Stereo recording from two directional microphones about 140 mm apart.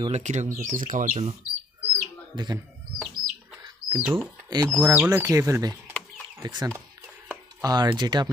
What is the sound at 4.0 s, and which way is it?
Speech, 15° right (ahead or behind).